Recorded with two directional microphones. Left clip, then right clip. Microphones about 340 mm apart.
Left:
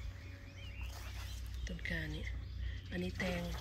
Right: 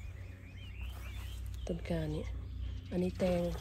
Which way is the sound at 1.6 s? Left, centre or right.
Centre.